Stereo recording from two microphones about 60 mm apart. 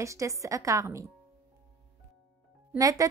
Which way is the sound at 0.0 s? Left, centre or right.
Right.